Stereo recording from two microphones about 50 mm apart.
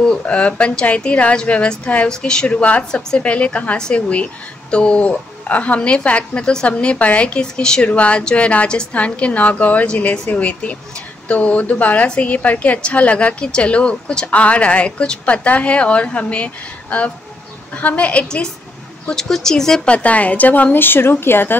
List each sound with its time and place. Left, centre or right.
0.3 s a woman's voice: left
19.0 s speech: centre
19.8 s a woman's voice: left